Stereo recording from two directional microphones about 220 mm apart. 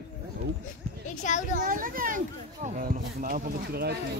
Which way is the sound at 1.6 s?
40° right (ahead or behind).